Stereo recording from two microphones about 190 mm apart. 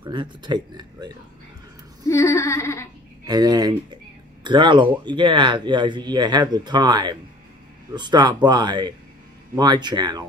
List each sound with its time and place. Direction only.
0.0 s speech: 25° right (ahead or behind)
2.0 s a sound: 15° left (ahead or behind)
3.3 s speech: 20° right (ahead or behind)